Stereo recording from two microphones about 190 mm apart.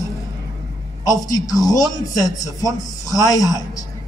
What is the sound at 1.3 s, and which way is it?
A man's voice, 20° left (ahead or behind).